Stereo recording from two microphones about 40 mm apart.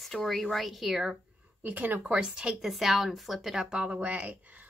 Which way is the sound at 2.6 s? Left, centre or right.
Centre.